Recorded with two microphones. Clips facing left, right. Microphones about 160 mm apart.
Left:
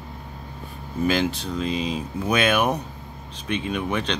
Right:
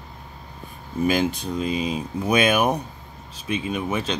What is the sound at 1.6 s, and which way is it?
Speech, 10° right (ahead or behind).